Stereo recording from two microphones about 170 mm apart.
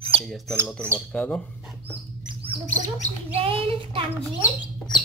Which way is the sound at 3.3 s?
35° right (ahead or behind).